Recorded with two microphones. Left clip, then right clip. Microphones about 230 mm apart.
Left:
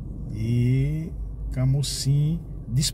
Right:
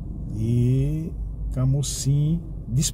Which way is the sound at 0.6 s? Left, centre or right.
Centre.